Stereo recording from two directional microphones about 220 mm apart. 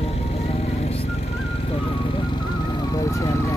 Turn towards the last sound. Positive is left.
turn(degrees=15)  # may be behind; listen again after turning